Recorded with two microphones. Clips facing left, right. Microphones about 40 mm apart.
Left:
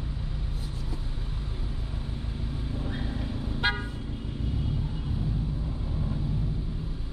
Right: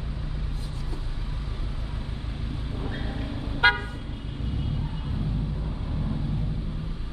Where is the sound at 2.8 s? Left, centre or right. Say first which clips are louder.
Right 1 dB; right.